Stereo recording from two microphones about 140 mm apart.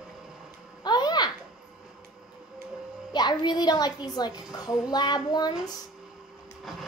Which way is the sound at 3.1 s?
30° left (ahead or behind).